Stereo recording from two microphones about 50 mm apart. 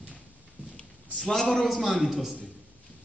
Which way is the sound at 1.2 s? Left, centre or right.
Centre.